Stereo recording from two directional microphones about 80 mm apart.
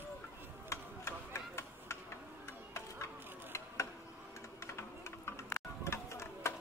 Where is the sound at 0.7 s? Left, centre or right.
Left.